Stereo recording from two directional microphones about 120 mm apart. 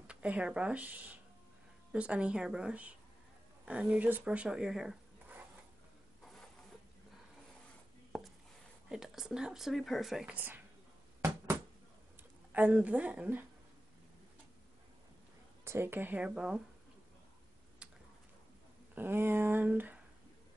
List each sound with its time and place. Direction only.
0.0 s speech: 10° right (ahead or behind)
8.8 s speech: 5° right (ahead or behind)
10.3 s speech: 15° right (ahead or behind)
11.1 s bouncing: 25° right (ahead or behind)
12.2 s speech: 15° right (ahead or behind)
15.6 s speech: 20° right (ahead or behind)
18.9 s speech: 20° right (ahead or behind)